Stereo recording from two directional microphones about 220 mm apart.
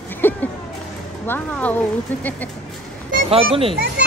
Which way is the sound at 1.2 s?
10° left (ahead or behind).